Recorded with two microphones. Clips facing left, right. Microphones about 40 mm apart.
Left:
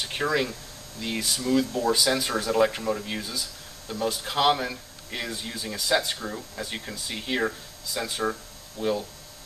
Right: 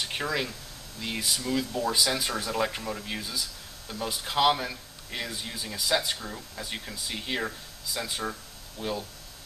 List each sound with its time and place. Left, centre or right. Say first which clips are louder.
0.0 s speech: left 4 dB; centre